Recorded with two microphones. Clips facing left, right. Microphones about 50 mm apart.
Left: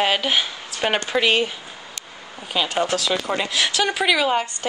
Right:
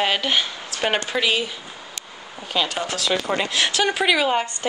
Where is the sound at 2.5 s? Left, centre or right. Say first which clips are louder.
Even; centre.